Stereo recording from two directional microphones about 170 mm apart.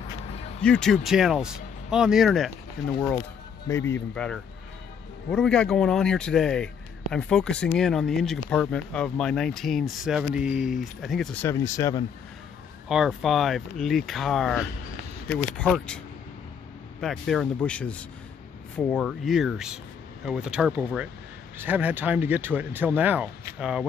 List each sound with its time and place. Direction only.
0.7 s speech: 5° left (ahead or behind)
3.6 s speech: 15° left (ahead or behind)
4.1 s speech: 5° left (ahead or behind)
11.4 s speech: 20° left (ahead or behind)
12.8 s speech: 5° right (ahead or behind)
17.0 s speech: centre (ahead or behind)